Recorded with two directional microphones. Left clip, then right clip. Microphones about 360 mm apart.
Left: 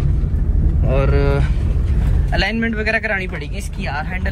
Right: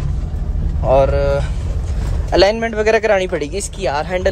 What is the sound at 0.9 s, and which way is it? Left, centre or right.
Speech, centre.